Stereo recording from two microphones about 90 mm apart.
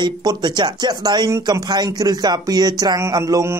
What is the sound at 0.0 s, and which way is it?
Speech, 50° right (ahead or behind).